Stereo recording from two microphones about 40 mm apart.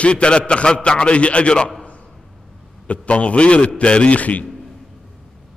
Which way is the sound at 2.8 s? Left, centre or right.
Left.